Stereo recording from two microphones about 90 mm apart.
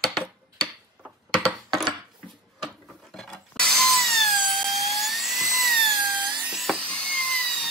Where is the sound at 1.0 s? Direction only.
15° right (ahead or behind).